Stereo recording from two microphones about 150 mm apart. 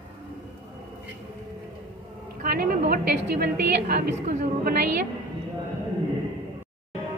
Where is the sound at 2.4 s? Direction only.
75° right (ahead or behind).